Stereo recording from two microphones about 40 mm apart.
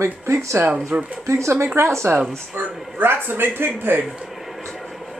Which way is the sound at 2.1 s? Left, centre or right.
Right.